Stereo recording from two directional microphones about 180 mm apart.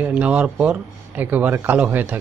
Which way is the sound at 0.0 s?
10° right (ahead or behind).